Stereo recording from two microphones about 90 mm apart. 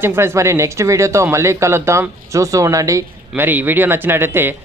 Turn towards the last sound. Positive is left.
turn(degrees=-25)  # may be behind; listen again after turning